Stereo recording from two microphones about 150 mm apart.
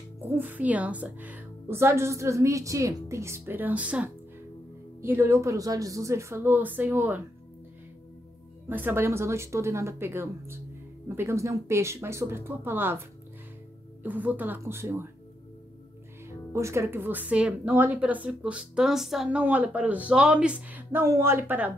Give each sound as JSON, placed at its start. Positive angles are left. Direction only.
{"t": 0.4, "sound": "speech", "side_deg": -10}
{"t": 8.6, "sound": "speech", "side_deg": -15}
{"t": 14.0, "sound": "speech", "side_deg": -10}
{"t": 16.3, "sound": "speech", "side_deg": -20}